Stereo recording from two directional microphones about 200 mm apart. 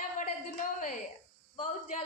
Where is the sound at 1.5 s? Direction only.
35° left (ahead or behind).